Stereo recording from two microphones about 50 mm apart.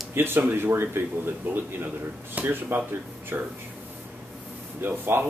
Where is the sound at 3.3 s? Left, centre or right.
Right.